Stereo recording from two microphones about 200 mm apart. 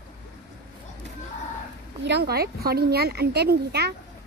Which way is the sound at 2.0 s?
55° right (ahead or behind).